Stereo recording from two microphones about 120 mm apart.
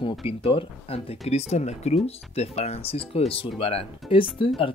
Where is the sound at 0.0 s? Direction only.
55° left (ahead or behind).